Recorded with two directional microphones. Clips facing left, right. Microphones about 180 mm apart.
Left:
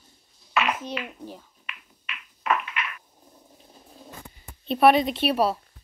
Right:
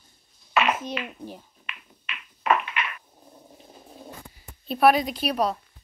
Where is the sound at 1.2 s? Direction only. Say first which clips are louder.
Right 1 dB; 15° right (ahead or behind).